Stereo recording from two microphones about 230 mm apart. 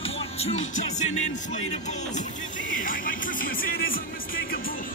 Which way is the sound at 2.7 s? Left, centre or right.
Left.